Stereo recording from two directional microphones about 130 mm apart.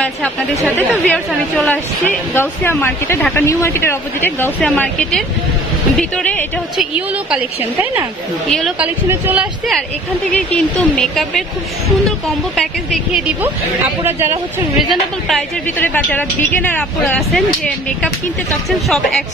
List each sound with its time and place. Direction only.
0.7 s speech: 10° left (ahead or behind)
8.5 s speech: 5° left (ahead or behind)
8.7 s speech: 15° right (ahead or behind)
10.3 s speech: 10° left (ahead or behind)
12.5 s speech: centre (ahead or behind)
14.0 s speech: 20° right (ahead or behind)
14.8 s speech: centre (ahead or behind)
15.8 s speech: 15° left (ahead or behind)